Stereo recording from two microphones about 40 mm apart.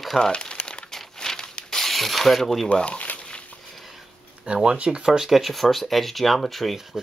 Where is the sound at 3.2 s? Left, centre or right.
Left.